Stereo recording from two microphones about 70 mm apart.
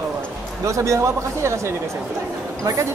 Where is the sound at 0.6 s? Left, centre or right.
Right.